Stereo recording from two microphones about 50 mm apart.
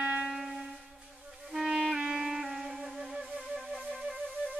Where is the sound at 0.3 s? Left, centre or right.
Centre.